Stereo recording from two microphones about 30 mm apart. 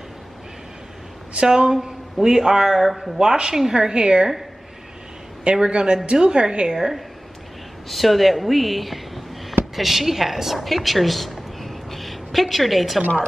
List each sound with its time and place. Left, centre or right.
1.3 s a woman's voice: right
1.8 s a man's voice: centre
2.6 s a man's voice: centre
3.2 s a woman's voice: right
3.7 s a woman's voice: right
5.6 s a woman's voice: right
7.9 s speech: centre